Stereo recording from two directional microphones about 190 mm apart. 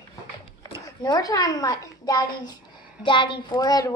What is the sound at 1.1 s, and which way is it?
A woman's voice, 20° left (ahead or behind).